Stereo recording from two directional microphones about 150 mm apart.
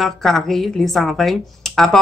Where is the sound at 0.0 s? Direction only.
5° left (ahead or behind).